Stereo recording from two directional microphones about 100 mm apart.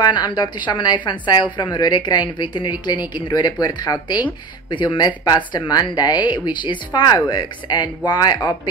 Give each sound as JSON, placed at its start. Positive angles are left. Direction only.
{"t": 0.0, "sound": "speech", "side_deg": 45}